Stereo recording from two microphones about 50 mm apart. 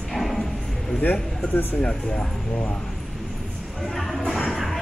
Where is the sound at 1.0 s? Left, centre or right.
Left.